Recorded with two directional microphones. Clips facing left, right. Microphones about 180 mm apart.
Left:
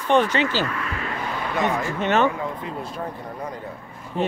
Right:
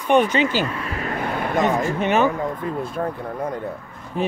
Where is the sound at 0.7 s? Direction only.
35° right (ahead or behind).